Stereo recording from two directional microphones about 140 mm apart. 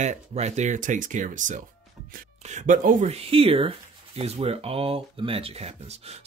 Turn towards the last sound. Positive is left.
turn(degrees=-50)  # may be behind; listen again after turning